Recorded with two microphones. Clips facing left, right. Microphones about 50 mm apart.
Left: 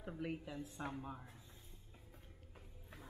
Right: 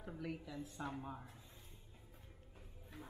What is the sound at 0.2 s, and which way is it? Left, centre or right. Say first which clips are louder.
Speech: left 2 dB; left.